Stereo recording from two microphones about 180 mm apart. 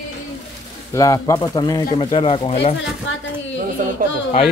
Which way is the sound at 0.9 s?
20° left (ahead or behind).